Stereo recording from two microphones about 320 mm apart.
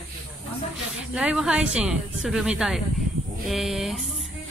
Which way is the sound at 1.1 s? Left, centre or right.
Centre.